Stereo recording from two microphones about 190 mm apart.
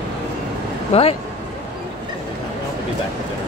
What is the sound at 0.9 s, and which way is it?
Speech, 30° left (ahead or behind).